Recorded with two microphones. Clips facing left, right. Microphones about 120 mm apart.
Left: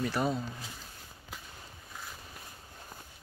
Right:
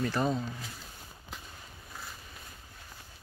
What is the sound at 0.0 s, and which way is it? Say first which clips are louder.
Speech: right 1 dB; 5° left (ahead or behind).